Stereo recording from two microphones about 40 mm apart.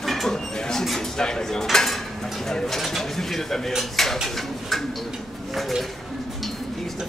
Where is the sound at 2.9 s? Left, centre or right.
Centre.